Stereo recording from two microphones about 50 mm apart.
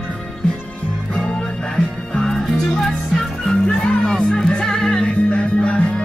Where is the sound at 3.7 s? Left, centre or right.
Centre.